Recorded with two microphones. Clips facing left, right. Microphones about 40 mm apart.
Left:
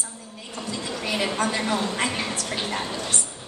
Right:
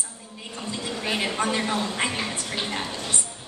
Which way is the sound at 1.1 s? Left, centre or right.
Right.